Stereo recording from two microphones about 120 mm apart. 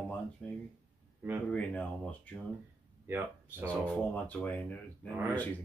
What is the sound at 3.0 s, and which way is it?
Speech, 20° right (ahead or behind).